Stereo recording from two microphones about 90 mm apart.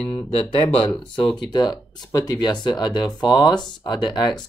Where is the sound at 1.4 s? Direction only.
50° left (ahead or behind).